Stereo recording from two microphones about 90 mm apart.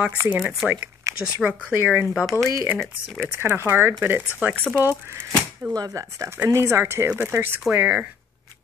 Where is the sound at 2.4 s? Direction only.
35° right (ahead or behind).